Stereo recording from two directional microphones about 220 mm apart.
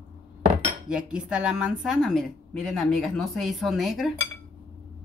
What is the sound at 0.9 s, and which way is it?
A woman's voice, 5° right (ahead or behind).